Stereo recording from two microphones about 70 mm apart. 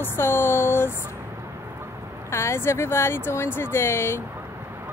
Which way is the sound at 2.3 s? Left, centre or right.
Left.